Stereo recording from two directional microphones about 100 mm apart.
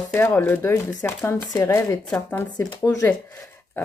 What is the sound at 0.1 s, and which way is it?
Speech, 20° left (ahead or behind).